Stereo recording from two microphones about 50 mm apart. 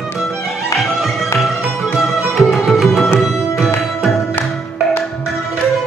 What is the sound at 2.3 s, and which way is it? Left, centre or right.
Music, centre.